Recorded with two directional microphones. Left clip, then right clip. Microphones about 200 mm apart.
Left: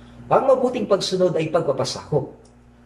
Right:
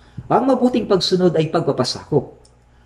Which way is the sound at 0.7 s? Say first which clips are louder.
Right 3 dB; 45° right (ahead or behind).